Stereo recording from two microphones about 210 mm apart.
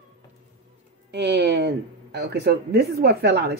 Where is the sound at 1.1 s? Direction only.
55° right (ahead or behind).